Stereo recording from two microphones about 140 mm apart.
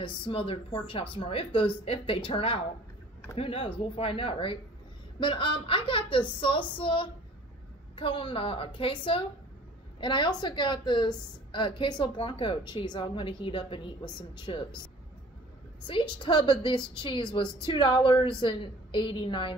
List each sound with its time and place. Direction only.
0.3 s a woman's voice: 40° left (ahead or behind)
15.9 s a woman's voice: 35° left (ahead or behind)